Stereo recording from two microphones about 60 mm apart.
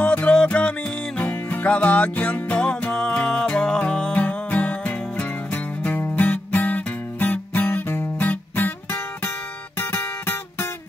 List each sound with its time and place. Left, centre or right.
0.0 s music: left
1.2 s music: left